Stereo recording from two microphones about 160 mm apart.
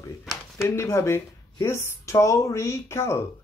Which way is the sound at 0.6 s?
15° left (ahead or behind).